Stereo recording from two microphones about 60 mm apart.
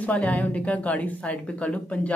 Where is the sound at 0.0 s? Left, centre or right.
Left.